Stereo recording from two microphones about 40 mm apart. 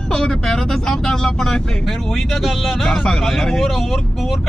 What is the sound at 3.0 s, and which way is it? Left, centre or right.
Speech, centre.